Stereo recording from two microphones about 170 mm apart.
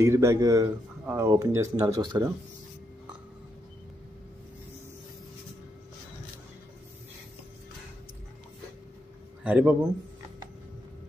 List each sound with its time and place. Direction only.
0.0 s speech: 15° right (ahead or behind)
9.4 s a man's voice: 10° right (ahead or behind)